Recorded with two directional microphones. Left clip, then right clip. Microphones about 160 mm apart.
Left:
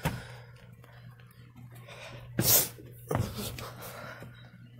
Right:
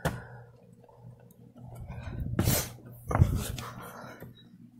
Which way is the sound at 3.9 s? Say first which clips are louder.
Left 2 dB; 15° left (ahead or behind).